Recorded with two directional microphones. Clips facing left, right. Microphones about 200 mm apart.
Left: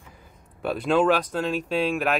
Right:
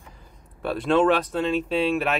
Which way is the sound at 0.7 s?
Centre (ahead or behind).